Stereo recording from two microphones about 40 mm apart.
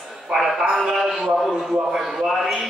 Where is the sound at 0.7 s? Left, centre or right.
Centre.